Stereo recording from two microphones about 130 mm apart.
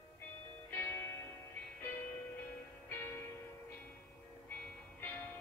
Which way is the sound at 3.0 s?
15° left (ahead or behind).